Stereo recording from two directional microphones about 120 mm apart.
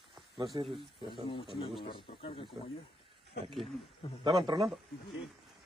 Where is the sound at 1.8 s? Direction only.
50° left (ahead or behind).